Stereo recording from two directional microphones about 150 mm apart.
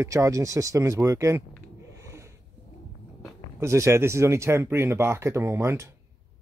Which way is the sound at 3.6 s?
20° right (ahead or behind).